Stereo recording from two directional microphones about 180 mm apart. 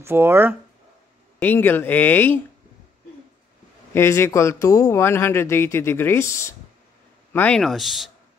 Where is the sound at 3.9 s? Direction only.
15° left (ahead or behind).